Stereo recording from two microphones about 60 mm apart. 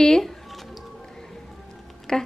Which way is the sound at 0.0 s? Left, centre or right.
Centre.